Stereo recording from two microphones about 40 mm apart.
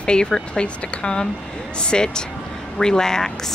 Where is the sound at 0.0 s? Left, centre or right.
Left.